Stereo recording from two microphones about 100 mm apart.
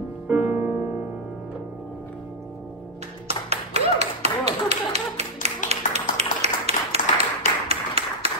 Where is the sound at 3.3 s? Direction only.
90° right.